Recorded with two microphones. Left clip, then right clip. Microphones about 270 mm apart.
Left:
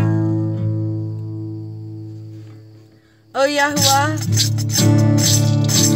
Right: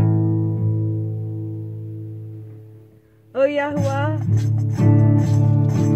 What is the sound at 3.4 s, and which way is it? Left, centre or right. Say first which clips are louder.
Music: left 3 dB; left.